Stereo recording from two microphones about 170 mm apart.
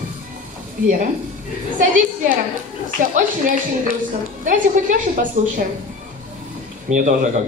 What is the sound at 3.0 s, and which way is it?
Speech, 50° right (ahead or behind).